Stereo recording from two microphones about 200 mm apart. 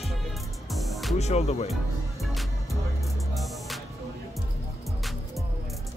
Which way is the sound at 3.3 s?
Centre (ahead or behind).